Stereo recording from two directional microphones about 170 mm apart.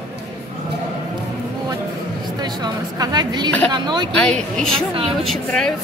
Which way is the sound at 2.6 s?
25° right (ahead or behind).